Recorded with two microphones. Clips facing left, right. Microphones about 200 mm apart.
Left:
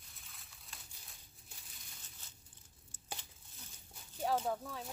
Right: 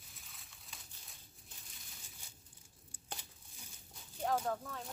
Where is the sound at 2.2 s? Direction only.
10° right (ahead or behind).